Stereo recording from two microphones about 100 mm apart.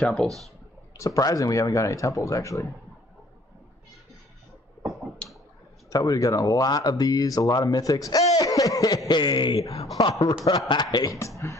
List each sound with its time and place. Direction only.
0.0 s speech: 5° left (ahead or behind)
0.9 s speech: 35° left (ahead or behind)
5.2 s a sound: 10° left (ahead or behind)
5.9 s speech: 35° left (ahead or behind)
9.9 s speech: 40° left (ahead or behind)